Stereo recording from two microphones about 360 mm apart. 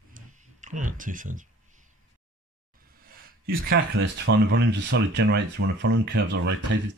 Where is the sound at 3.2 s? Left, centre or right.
Right.